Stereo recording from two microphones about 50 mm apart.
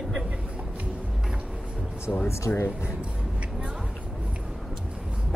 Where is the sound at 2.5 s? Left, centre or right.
Left.